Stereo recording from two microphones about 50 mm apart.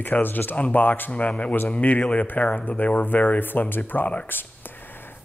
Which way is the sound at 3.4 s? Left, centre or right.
Left.